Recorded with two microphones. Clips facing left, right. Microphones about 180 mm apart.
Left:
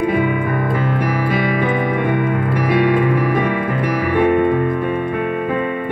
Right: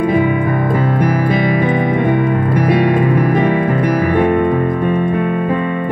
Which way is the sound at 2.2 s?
40° right (ahead or behind).